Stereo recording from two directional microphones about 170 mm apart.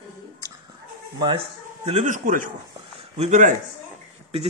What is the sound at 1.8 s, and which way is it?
A man's voice, 40° right (ahead or behind).